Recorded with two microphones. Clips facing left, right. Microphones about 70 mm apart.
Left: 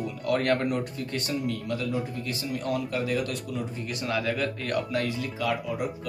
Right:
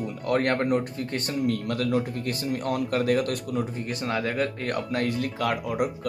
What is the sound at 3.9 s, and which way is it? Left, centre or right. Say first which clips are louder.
Speech: right 1 dB; right.